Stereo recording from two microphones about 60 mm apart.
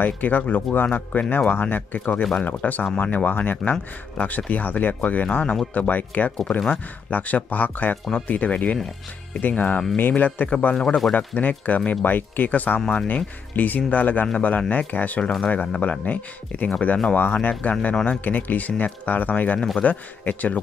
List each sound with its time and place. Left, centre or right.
0.0 s speech: left